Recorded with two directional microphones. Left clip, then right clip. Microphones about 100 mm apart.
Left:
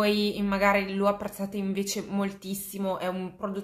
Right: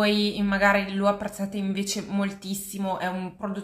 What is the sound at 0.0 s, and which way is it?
A woman's voice, 20° left (ahead or behind).